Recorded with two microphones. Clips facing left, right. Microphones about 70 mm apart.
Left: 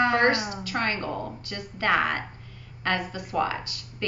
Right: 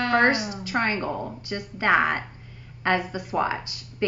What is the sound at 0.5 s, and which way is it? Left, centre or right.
Speech, right.